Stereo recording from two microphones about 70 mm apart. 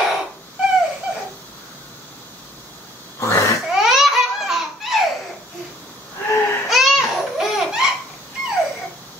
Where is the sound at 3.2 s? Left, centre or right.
Left.